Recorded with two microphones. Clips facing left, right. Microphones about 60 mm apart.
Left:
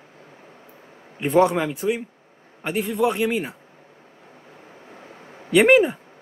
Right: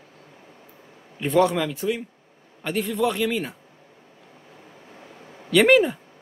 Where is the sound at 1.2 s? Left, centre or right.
Left.